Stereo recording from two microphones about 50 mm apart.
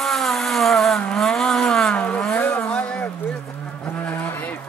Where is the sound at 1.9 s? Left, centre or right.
Left.